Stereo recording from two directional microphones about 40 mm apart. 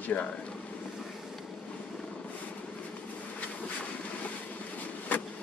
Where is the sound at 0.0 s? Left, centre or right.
Left.